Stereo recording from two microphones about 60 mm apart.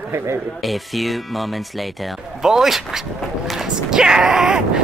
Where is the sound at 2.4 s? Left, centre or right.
Centre.